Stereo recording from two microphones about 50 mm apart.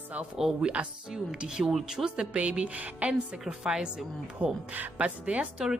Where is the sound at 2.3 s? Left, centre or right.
Right.